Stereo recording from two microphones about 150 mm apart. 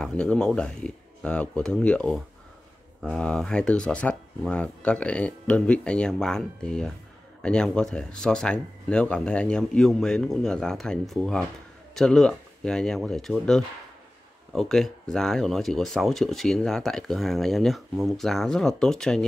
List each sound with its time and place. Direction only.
0.0 s speech: 5° left (ahead or behind)